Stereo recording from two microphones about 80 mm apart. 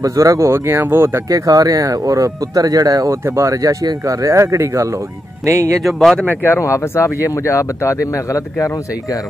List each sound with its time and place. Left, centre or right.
0.0 s speech: right
1.3 s speech: right
5.8 s speech: centre
6.2 s speech: left
6.6 s a man's voice: left